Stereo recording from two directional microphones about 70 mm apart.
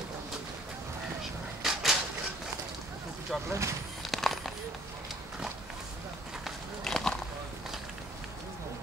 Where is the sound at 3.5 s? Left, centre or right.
Right.